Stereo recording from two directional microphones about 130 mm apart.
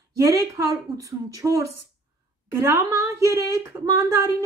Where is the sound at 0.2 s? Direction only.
25° right (ahead or behind).